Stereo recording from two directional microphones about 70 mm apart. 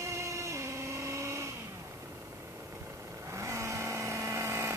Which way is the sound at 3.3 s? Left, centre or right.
Right.